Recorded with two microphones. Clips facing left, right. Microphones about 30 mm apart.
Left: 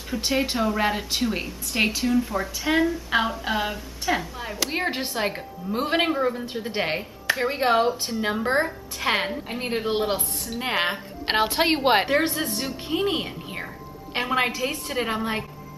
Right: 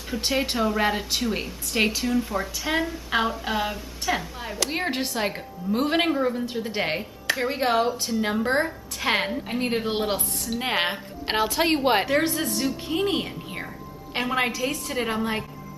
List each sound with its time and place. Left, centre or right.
0.1 s a woman's voice: centre
8.2 s a woman's voice: centre
11.3 s a woman's voice: centre